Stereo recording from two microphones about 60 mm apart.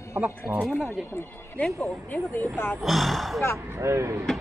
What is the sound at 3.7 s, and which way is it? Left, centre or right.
Speech, right.